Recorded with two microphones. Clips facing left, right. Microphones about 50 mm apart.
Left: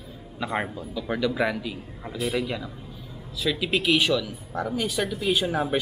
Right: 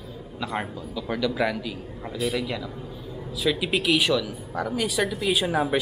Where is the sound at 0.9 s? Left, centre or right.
Centre.